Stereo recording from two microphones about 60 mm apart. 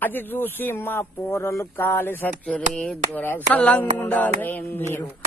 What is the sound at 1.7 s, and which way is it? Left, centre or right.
A man's voice, left.